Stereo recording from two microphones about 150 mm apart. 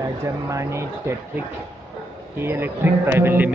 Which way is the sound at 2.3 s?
15° right (ahead or behind).